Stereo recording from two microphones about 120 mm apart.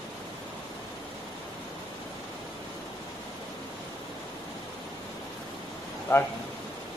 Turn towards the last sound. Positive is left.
turn(degrees=25)  # may be behind; listen again after turning